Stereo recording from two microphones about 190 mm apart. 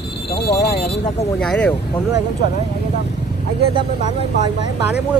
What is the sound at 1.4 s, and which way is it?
Speech, 5° left (ahead or behind).